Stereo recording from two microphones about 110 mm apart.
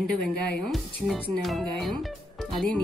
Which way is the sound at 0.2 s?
5° left (ahead or behind).